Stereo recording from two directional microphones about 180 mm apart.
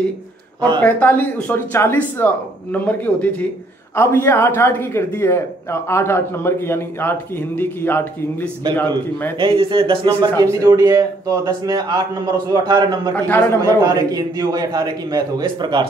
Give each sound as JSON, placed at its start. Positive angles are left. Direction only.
{"t": 0.7, "sound": "a man's voice", "side_deg": 10}
{"t": 9.4, "sound": "a man's voice", "side_deg": -30}
{"t": 13.1, "sound": "a man's voice", "side_deg": 10}
{"t": 13.7, "sound": "a man's voice", "side_deg": -20}